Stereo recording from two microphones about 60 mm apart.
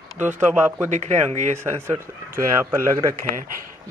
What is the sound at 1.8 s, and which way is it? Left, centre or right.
Speech, right.